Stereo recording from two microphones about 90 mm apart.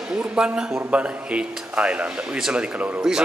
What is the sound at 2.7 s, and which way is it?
Speech, 20° right (ahead or behind).